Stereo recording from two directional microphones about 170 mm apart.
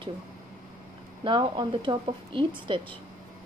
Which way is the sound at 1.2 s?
30° right (ahead or behind).